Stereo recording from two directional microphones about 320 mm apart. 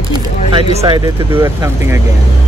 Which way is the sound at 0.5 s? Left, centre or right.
Centre.